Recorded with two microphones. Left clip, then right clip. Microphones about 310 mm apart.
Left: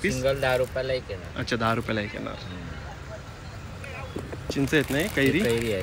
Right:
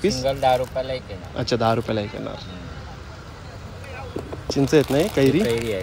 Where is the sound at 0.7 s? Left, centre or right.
Left.